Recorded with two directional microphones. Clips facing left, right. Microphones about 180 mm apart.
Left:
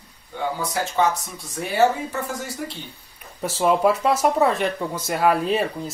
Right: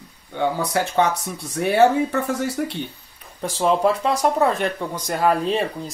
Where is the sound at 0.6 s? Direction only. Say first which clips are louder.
Even; 60° right (ahead or behind).